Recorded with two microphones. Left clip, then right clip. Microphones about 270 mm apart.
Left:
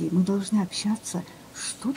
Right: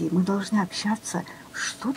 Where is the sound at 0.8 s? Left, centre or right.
Right.